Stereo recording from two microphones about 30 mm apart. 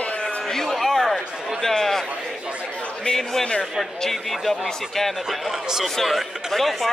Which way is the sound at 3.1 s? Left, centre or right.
Centre.